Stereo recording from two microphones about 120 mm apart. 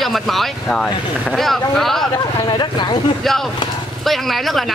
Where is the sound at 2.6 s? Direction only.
40° left (ahead or behind).